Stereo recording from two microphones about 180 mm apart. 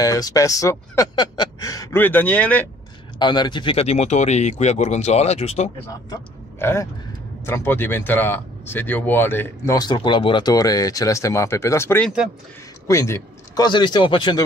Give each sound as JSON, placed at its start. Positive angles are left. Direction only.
{"t": 0.0, "sound": "speech", "side_deg": 20}
{"t": 3.2, "sound": "speech", "side_deg": 25}
{"t": 6.6, "sound": "speech", "side_deg": 15}